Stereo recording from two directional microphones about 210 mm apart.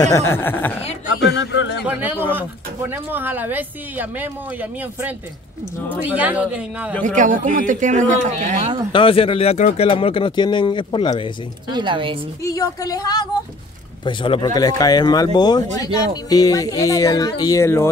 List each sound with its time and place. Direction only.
0.0 s speech: 15° left (ahead or behind)
1.3 s a sound: 60° left (ahead or behind)
1.9 s speech: 10° right (ahead or behind)
6.9 s speech: 5° left (ahead or behind)
7.2 s speech: 40° right (ahead or behind)
8.9 s speech: 25° left (ahead or behind)
11.7 s speech: 20° right (ahead or behind)
12.4 s speech: 15° left (ahead or behind)